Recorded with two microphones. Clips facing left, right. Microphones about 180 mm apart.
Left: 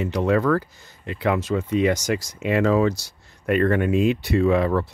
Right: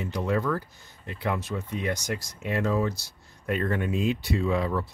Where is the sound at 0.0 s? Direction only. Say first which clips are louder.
Left 7 dB; 85° left.